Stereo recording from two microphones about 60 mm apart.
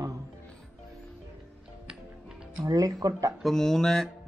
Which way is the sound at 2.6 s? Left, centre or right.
Right.